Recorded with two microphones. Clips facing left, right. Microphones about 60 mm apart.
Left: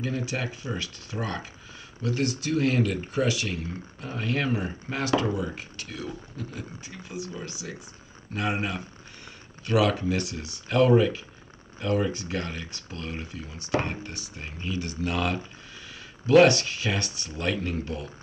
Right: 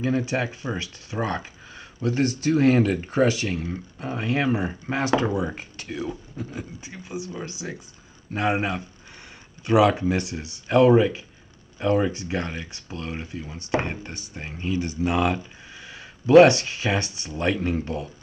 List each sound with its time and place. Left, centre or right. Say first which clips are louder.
0.0 s speech: right 6 dB; right
4.0 s speech: right 4 dB; right